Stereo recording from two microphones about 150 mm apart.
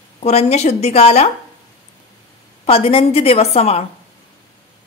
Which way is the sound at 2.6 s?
40° left (ahead or behind).